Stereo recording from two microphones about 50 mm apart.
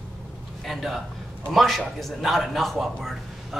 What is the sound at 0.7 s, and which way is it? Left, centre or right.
A man's voice, centre.